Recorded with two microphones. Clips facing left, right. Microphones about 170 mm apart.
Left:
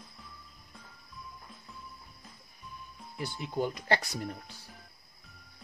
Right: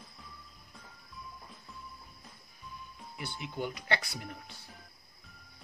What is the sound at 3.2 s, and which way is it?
Speech, 40° left (ahead or behind).